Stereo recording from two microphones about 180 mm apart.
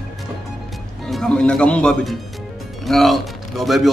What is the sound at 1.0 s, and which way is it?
A man's voice, 5° left (ahead or behind).